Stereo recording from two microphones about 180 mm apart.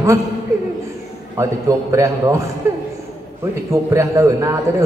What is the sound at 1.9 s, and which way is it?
Speech, 15° right (ahead or behind).